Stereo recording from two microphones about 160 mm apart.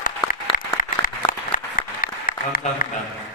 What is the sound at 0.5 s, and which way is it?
Applause, 65° left (ahead or behind).